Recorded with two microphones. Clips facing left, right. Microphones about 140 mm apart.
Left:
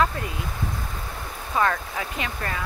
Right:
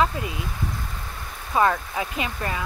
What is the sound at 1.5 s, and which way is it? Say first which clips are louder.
Speech: right 3 dB; 15° right (ahead or behind).